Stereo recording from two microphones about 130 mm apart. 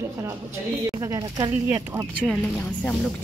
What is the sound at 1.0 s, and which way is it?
Speech, 25° right (ahead or behind).